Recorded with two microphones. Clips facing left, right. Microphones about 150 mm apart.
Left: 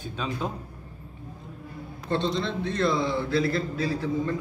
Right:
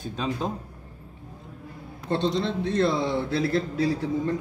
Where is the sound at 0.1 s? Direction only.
35° right (ahead or behind).